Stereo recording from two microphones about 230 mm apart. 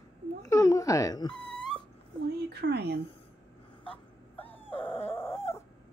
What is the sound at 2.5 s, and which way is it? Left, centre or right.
Speech, right.